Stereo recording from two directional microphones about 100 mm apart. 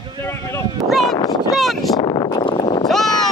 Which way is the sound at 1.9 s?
45° left (ahead or behind).